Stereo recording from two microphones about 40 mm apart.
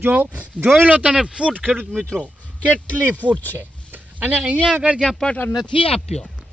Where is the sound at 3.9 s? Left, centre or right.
Right.